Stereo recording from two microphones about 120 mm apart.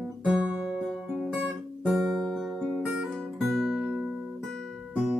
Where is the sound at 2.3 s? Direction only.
5° right (ahead or behind).